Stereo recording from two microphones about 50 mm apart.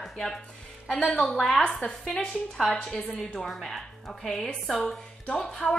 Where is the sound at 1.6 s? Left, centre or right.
Left.